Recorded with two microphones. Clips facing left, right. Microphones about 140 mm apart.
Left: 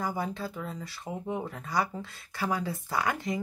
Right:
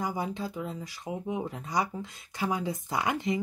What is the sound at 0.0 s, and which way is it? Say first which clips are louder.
Speech: even; 15° right (ahead or behind).